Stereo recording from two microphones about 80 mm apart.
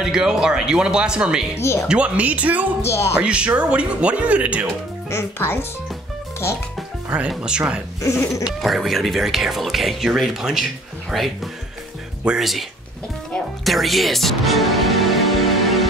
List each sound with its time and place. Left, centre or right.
0.0 s speech: centre
1.6 s a sound: left
1.9 s speech: centre
2.8 s a sound: left
3.2 s speech: centre
5.1 s speech: left
7.2 s speech: centre
8.0 s a sound: left
8.5 s speech: centre
13.7 s music: centre